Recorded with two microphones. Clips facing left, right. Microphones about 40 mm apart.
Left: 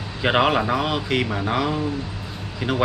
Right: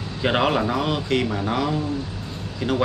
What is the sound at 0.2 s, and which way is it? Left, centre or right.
Speech, centre.